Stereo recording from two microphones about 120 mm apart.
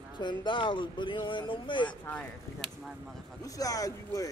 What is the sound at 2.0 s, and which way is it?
Speech, 10° left (ahead or behind).